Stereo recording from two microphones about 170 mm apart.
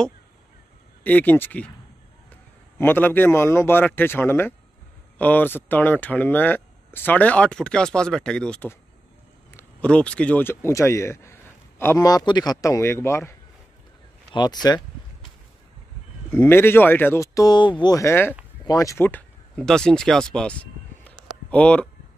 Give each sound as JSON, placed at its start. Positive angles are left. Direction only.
{"t": 1.0, "sound": "speech", "side_deg": 10}
{"t": 2.8, "sound": "speech", "side_deg": 10}
{"t": 16.3, "sound": "speech", "side_deg": 15}